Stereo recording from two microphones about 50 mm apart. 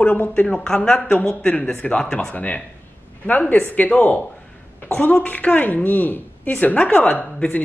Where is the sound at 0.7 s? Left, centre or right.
Centre.